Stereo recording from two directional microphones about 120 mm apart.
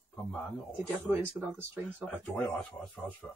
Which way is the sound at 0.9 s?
20° right (ahead or behind).